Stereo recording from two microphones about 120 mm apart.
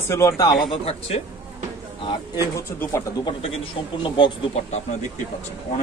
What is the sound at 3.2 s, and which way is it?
A man's voice, 45° left (ahead or behind).